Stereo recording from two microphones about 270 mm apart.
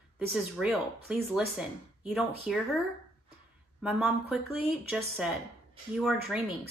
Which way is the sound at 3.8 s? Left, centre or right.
Centre.